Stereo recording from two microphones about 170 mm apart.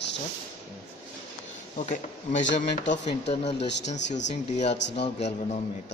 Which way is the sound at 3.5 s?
90° left.